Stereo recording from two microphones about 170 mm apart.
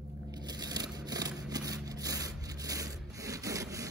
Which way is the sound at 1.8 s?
20° right (ahead or behind).